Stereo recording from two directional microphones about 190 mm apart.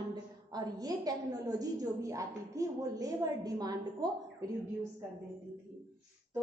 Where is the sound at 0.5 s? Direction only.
20° right (ahead or behind).